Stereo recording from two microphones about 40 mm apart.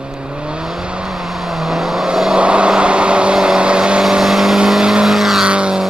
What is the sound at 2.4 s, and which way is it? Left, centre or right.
Vehicle, right.